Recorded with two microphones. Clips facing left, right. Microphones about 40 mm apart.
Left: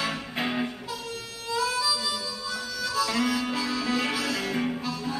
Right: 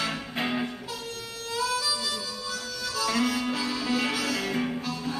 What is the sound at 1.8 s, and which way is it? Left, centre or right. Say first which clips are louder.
Music: left 2 dB; centre.